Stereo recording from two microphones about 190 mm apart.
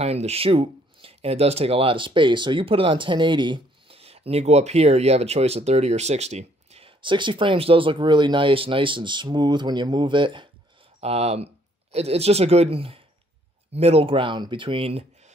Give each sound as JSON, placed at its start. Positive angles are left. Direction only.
{"t": 0.0, "sound": "speech", "side_deg": -35}